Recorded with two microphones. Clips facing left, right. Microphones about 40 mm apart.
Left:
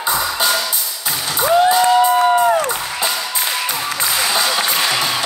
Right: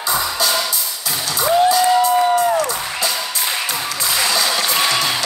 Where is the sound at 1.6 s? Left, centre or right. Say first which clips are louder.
Left 1 dB; left.